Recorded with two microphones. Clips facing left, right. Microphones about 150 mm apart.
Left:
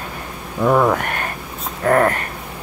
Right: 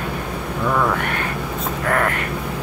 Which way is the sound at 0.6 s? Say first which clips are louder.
Left 5 dB; 40° left (ahead or behind).